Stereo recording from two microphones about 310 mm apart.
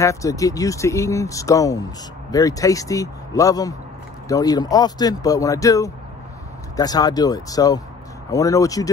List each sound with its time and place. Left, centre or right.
0.0 s speech: centre